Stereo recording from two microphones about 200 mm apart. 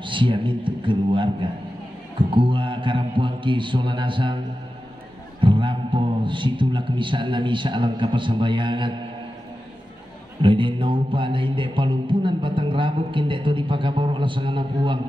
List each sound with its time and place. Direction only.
0.0 s mantra: 25° right (ahead or behind)
5.4 s mantra: 25° right (ahead or behind)
10.4 s mantra: 25° right (ahead or behind)